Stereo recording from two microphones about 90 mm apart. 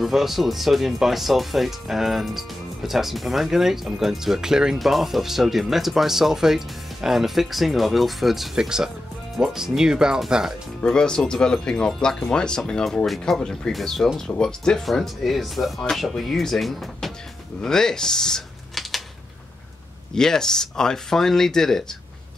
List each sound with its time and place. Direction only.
0.0 s speech: centre (ahead or behind)
10.8 s speech: 10° left (ahead or behind)
20.2 s speech: 5° left (ahead or behind)